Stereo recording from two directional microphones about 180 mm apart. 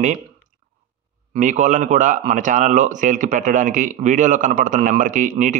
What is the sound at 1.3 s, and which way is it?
Speech, 40° right (ahead or behind).